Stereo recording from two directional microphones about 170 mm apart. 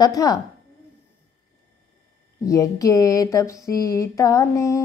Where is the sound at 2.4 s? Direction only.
20° left (ahead or behind).